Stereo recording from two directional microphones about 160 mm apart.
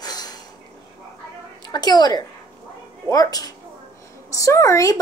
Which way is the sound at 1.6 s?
25° left (ahead or behind).